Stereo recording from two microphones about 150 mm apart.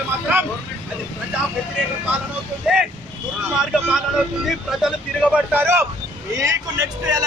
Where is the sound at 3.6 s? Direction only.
5° right (ahead or behind).